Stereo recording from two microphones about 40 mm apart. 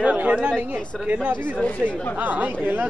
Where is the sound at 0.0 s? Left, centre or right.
Right.